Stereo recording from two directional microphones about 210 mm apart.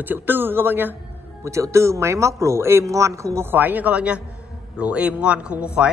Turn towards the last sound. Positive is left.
turn(degrees=-5)  # may be behind; listen again after turning